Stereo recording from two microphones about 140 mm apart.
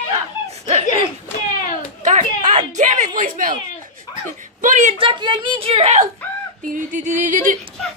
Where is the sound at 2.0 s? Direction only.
60° right (ahead or behind); by 3.5 s 75° right (ahead or behind).